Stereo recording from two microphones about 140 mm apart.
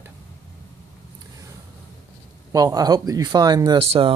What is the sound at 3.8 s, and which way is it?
Speech, 45° right (ahead or behind).